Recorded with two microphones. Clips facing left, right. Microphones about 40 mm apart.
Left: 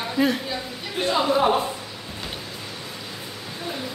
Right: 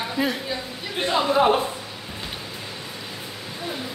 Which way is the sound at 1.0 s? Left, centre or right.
Right.